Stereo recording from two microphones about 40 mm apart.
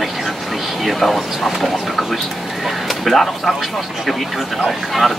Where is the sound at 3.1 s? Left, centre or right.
Centre.